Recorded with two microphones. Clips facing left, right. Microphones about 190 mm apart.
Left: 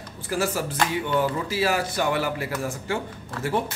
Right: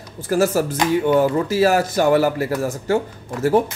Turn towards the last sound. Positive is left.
turn(degrees=-40)  # may be behind; listen again after turning